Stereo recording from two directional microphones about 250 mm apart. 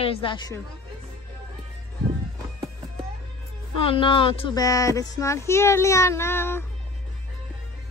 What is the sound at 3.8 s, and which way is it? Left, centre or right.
Speech, left.